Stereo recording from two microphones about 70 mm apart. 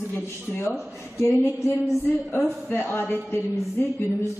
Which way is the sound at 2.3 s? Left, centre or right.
Left.